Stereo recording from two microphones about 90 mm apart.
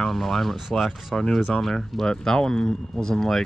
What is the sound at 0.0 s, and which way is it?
Speech, 5° left (ahead or behind).